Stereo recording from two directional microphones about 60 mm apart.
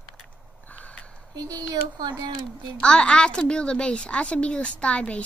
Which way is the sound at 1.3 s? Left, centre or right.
Right.